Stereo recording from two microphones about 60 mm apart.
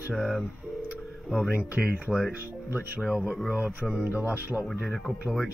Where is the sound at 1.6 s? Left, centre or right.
Centre.